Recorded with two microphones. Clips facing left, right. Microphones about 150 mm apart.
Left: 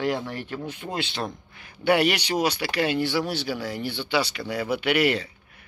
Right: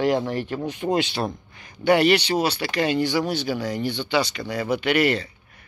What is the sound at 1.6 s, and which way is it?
Speech, 5° left (ahead or behind).